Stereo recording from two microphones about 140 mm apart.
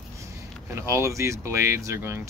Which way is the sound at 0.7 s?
20° right (ahead or behind).